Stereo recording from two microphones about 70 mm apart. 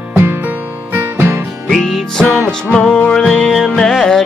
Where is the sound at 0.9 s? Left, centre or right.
Right.